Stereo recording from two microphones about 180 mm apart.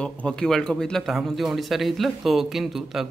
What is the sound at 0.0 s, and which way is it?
Speech, 5° left (ahead or behind).